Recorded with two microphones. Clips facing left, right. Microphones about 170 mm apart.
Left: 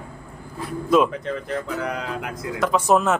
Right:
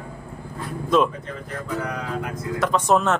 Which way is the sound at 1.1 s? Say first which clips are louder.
Left 6 dB; 80° left.